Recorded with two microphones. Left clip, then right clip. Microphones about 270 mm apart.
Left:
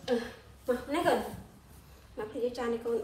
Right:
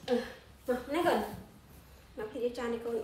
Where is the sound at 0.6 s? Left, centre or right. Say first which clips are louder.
Left 1 dB; left.